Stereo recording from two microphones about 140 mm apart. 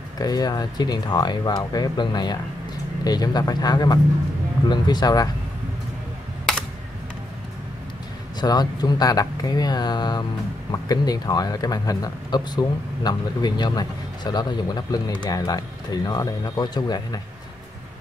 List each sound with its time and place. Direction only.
0.2 s speech: 30° left (ahead or behind)
8.4 s speech: 30° left (ahead or behind)